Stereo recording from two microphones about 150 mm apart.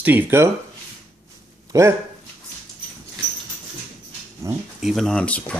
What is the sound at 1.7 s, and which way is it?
Speech, 25° right (ahead or behind).